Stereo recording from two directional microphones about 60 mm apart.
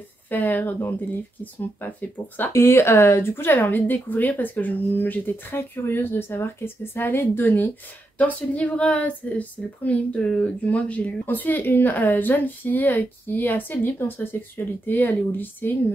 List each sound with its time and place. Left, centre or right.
0.3 s speech: left
2.5 s speech: left
8.2 s a woman's voice: left